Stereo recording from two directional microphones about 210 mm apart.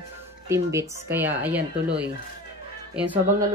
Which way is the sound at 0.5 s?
15° right (ahead or behind).